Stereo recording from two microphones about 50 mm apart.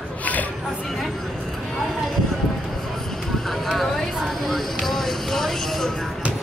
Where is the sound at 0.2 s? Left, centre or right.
Left.